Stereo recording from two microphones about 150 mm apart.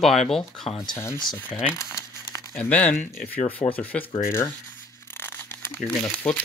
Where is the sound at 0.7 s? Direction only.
20° left (ahead or behind).